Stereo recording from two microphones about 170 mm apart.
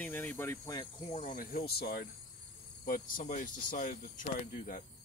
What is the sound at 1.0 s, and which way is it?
Speech, 45° left (ahead or behind).